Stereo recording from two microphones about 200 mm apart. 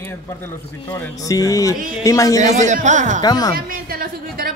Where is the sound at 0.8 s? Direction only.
15° left (ahead or behind).